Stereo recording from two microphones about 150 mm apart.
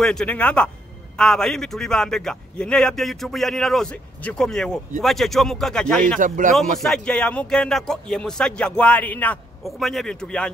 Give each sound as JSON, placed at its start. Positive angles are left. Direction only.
{"t": 0.0, "sound": "speech", "side_deg": 5}
{"t": 6.1, "sound": "speech", "side_deg": -60}
{"t": 6.5, "sound": "speech", "side_deg": 0}